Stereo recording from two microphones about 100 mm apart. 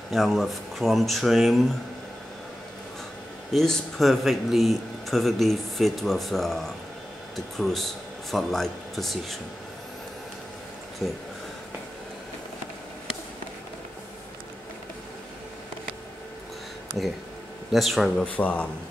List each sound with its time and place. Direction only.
0.1 s a man's voice: centre (ahead or behind)
3.5 s a man's voice: 5° left (ahead or behind)
11.0 s a man's voice: 5° left (ahead or behind)
17.6 s a man's voice: centre (ahead or behind)
18.2 s a man's voice: 15° left (ahead or behind)